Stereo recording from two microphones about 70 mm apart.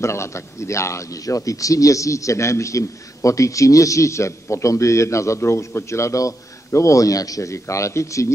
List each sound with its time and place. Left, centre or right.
0.0 s a man's voice: left